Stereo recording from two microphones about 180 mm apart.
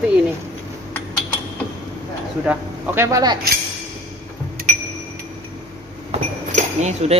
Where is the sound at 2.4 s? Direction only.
10° right (ahead or behind).